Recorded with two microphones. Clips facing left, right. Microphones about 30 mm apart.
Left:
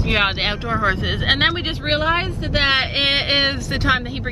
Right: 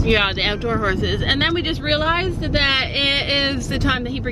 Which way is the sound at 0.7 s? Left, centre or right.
Left.